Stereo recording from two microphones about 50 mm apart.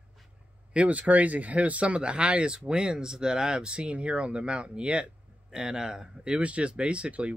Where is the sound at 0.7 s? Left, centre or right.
Right.